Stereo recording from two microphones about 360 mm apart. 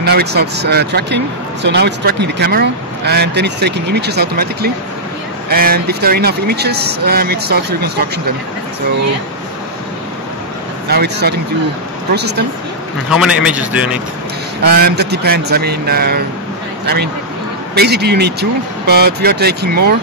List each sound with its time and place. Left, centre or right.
0.0 s speech: right
10.9 s speech: right
13.1 s a man's voice: centre
14.6 s speech: right